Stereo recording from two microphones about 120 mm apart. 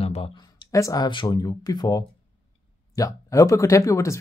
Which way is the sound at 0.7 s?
30° left (ahead or behind).